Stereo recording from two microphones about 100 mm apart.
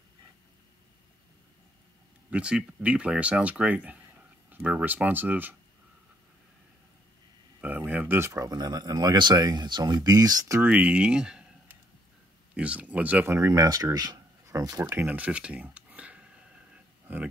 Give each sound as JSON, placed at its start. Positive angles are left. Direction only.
{"t": 2.3, "sound": "speech", "side_deg": -10}
{"t": 7.6, "sound": "speech", "side_deg": -15}
{"t": 8.3, "sound": "speech", "side_deg": -35}
{"t": 10.6, "sound": "speech", "side_deg": -15}
{"t": 12.5, "sound": "speech", "side_deg": -15}
{"t": 13.3, "sound": "speech", "side_deg": -30}
{"t": 15.0, "sound": "a sound", "side_deg": -15}